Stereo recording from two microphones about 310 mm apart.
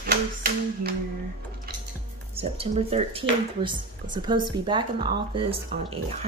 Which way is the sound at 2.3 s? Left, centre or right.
Centre.